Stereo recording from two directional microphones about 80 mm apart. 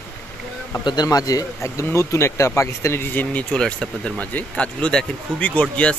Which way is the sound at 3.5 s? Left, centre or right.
Centre.